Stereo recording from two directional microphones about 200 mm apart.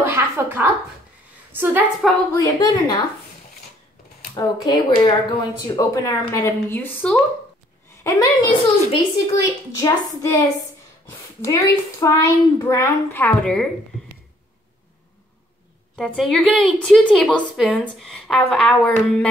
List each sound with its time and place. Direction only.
0.0 s a sound: 15° right (ahead or behind)
1.5 s a woman's voice: 10° right (ahead or behind)
2.3 s speech: 20° left (ahead or behind)
4.4 s a woman's voice: 20° left (ahead or behind); by 13.7 s 5° left (ahead or behind)
16.0 s a woman's voice: 5° left (ahead or behind)